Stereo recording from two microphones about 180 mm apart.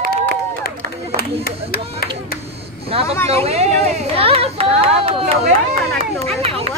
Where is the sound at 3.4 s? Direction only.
35° right (ahead or behind).